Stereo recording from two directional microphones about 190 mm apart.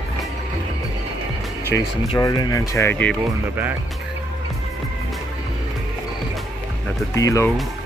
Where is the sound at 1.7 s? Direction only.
10° left (ahead or behind).